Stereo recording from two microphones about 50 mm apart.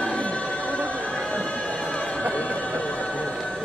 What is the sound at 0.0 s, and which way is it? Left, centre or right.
Music, left.